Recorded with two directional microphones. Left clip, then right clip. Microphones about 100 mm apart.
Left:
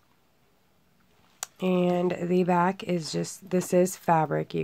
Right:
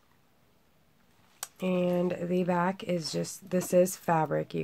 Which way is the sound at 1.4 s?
40° left (ahead or behind).